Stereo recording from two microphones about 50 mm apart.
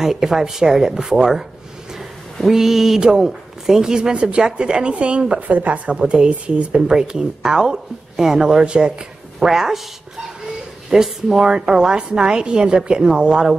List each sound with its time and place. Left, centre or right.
0.0 s a woman's voice: centre
2.4 s a woman's voice: centre; by 5.9 s right
5.9 s a woman's voice: centre